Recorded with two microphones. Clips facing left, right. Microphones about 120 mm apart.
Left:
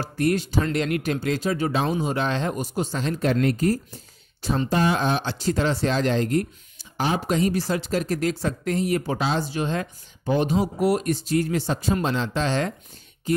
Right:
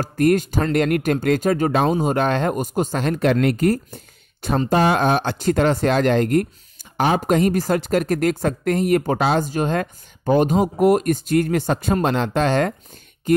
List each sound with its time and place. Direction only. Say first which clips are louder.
0.0 s speech: right 6 dB; 50° right (ahead or behind)